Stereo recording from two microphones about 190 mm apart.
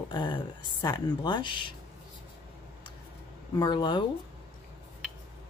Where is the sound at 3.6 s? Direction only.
20° left (ahead or behind).